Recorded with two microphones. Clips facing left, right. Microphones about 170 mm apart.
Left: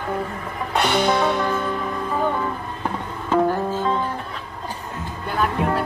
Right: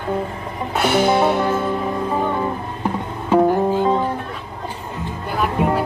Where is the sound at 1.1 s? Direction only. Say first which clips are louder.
Right 4 dB; 25° right (ahead or behind).